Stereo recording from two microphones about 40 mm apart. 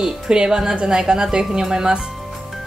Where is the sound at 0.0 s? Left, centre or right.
Centre.